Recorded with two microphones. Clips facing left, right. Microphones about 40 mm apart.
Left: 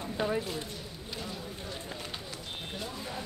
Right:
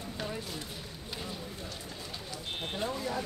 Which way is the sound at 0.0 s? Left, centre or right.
Left.